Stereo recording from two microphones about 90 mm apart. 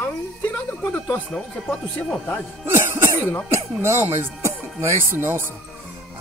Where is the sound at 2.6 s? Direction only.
25° right (ahead or behind).